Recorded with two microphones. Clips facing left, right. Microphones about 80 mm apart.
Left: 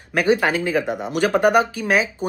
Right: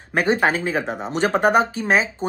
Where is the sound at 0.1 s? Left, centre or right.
Right.